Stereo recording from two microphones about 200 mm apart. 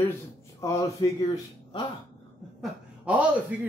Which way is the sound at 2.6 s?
5° right (ahead or behind).